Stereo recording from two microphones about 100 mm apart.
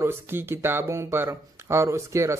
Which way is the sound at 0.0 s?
25° right (ahead or behind).